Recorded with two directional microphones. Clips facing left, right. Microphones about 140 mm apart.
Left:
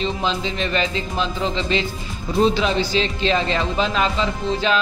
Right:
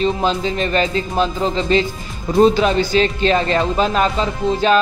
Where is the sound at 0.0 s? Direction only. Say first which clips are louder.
Right 5 dB; 45° right (ahead or behind).